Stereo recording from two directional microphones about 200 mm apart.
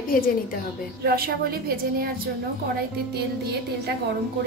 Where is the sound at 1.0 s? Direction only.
50° right (ahead or behind).